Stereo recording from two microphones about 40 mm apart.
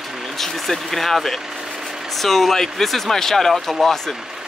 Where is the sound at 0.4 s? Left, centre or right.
Centre.